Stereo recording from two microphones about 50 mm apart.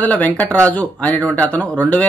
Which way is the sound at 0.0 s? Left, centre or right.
Left.